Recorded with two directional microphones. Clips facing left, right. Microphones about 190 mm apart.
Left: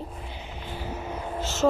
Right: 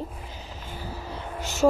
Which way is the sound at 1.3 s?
15° right (ahead or behind).